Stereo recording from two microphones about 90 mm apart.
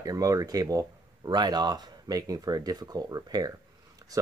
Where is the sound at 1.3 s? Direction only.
50° right (ahead or behind).